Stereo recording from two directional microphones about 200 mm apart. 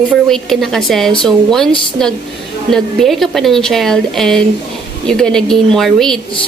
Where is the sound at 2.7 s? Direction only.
Centre (ahead or behind).